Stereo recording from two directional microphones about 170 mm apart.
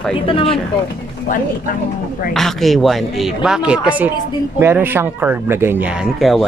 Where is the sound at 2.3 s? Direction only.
Centre (ahead or behind).